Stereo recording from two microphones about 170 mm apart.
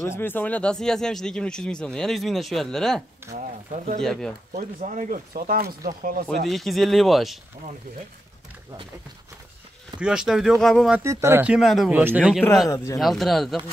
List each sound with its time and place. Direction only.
0.2 s speech: 10° left (ahead or behind)
3.3 s speech: 45° right (ahead or behind)
4.0 s speech: 5° left (ahead or behind)
4.6 s speech: 45° right (ahead or behind)
6.4 s speech: centre (ahead or behind)
9.9 s speech: 5° right (ahead or behind)
11.1 s speech: 15° right (ahead or behind); by 11.9 s centre (ahead or behind)
11.9 s speech: 10° right (ahead or behind)
12.6 s speech: 20° left (ahead or behind)
13.0 s speech: centre (ahead or behind)